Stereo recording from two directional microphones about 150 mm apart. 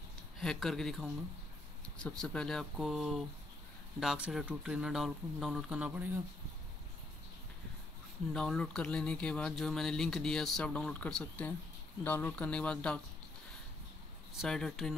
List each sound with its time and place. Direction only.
0.4 s speech: centre (ahead or behind)
8.3 s speech: 5° left (ahead or behind)
14.4 s speech: centre (ahead or behind)